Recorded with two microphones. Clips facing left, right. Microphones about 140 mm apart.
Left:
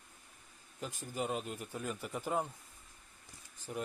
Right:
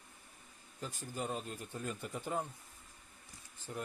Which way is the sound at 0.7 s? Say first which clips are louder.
Left 2 dB; 15° left (ahead or behind).